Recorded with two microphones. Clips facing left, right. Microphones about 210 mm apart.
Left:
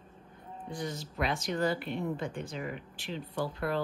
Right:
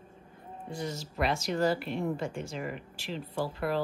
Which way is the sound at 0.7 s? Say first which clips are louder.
Right 1 dB; 5° right (ahead or behind).